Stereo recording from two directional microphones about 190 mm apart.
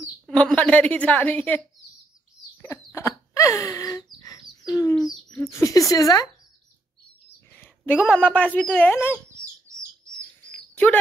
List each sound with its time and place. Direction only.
0.0 s speech: 5° left (ahead or behind)
2.6 s a sound: 15° left (ahead or behind)
5.3 s speech: 15° left (ahead or behind)
7.4 s a sound: 10° left (ahead or behind)
8.2 s speech: 10° left (ahead or behind)
9.7 s bird: 15° right (ahead or behind)
10.1 s chirp: 5° left (ahead or behind)